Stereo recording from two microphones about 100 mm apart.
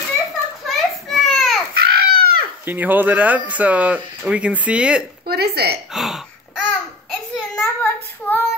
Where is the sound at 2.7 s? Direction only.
20° right (ahead or behind).